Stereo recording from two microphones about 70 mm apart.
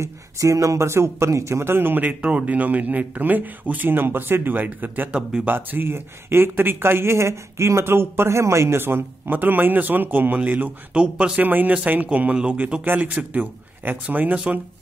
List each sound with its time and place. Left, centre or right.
0.0 s speech: right
2.2 s speech: centre
5.1 s speech: centre
5.5 s speech: right
14.3 s speech: centre